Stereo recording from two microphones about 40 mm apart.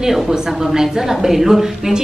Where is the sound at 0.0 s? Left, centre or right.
Centre.